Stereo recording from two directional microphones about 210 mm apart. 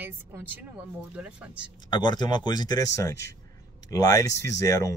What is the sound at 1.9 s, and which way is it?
Speech, 20° left (ahead or behind).